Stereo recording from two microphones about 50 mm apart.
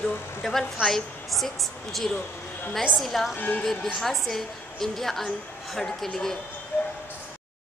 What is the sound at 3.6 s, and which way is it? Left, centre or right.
A woman's voice, centre.